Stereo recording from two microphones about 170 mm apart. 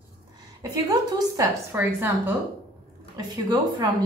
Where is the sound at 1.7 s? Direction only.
10° right (ahead or behind).